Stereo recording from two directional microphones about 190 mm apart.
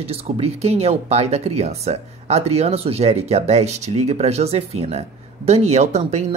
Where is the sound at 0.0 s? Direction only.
35° right (ahead or behind).